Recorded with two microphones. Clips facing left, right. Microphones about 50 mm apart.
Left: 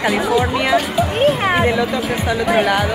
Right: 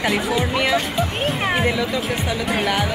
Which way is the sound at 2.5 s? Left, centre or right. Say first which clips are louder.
Left 5 dB; left.